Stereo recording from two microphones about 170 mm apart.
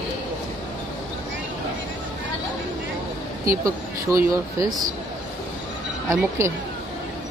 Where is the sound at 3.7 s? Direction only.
20° right (ahead or behind).